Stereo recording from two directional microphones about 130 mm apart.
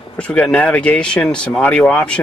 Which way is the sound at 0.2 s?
10° left (ahead or behind).